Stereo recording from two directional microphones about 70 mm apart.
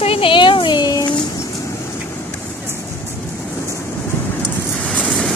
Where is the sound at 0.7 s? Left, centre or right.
Left.